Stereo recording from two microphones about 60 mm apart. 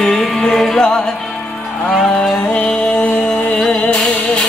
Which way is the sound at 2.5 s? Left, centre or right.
Centre.